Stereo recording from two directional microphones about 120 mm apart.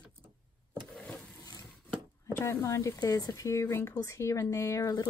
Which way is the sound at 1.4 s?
30° left (ahead or behind).